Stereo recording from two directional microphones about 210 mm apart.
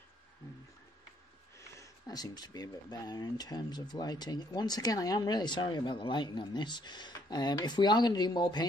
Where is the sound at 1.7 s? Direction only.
20° left (ahead or behind).